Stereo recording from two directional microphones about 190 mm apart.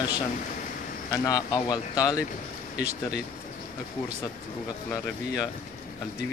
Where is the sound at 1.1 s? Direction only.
20° left (ahead or behind).